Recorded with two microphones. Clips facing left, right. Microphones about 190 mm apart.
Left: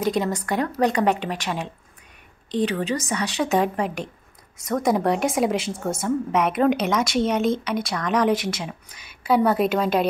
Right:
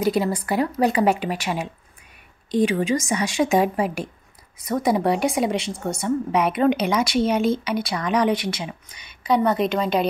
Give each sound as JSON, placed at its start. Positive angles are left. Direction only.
{"t": 0.0, "sound": "a woman's voice", "side_deg": -5}